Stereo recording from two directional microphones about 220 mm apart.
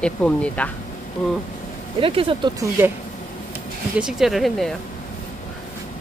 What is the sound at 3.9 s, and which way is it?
Speech, 5° right (ahead or behind).